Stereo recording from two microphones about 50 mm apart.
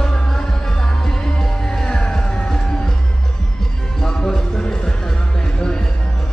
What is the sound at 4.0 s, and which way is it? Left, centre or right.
Music, centre.